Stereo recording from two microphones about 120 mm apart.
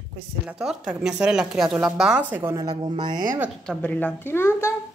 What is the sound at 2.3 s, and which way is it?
Speech, 20° right (ahead or behind).